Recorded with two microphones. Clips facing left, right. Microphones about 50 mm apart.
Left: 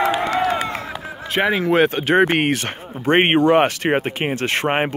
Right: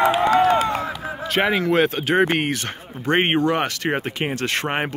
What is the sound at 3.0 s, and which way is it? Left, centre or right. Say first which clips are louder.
Speech: left 4 dB; left.